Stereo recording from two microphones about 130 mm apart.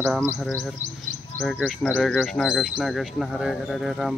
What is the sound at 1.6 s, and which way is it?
Speech, 10° right (ahead or behind).